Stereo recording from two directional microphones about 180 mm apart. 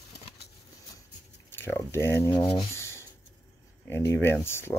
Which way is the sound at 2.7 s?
15° left (ahead or behind).